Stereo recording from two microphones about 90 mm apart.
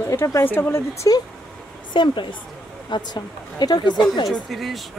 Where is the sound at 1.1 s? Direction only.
45° left (ahead or behind).